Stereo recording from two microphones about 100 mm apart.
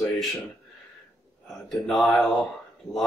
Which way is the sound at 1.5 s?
Centre (ahead or behind).